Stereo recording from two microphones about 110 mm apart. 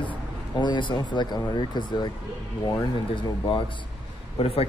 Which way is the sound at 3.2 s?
50° left (ahead or behind).